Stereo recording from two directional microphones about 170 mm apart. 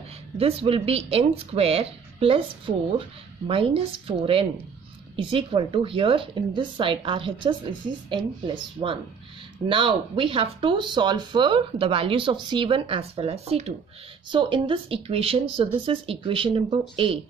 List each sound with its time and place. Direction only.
0.4 s speech: 35° right (ahead or behind)
8.8 s speech: 35° right (ahead or behind)